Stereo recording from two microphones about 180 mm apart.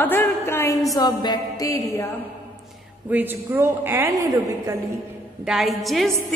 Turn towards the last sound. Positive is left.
turn(degrees=0)  # may be behind; listen again after turning